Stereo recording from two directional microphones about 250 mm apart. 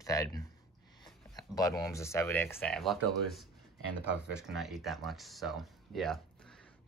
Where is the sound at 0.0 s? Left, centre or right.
Centre.